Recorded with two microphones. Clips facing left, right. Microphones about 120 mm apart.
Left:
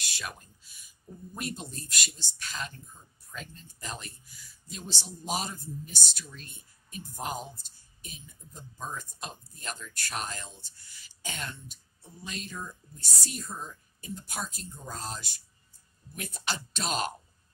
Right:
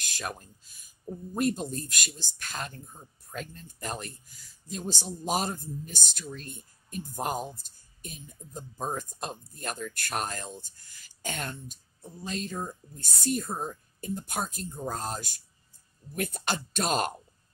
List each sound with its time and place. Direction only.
0.0 s speech: 45° right (ahead or behind)